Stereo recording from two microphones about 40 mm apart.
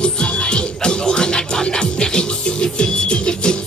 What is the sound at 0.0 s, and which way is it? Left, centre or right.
Music, left.